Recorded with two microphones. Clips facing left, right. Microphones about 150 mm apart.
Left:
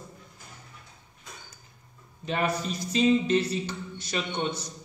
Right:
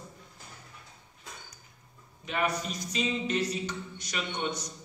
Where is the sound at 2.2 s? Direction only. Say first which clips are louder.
Left 3 dB; 30° left (ahead or behind).